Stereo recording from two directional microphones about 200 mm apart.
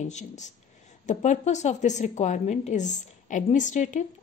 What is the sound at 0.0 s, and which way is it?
A woman's voice, 35° left (ahead or behind).